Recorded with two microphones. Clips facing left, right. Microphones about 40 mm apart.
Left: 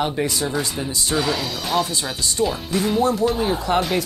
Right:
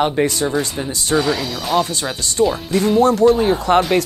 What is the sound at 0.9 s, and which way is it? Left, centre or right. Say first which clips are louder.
Speech: right 4 dB; right.